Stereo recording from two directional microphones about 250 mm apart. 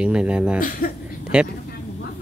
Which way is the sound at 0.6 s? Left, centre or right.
Left.